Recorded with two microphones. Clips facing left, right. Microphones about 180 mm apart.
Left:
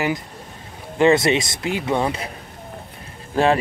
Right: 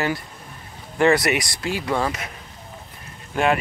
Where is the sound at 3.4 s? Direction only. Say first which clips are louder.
Left 3 dB; 35° left (ahead or behind).